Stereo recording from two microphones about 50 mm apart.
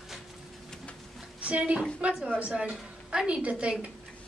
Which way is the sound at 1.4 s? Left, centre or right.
Right.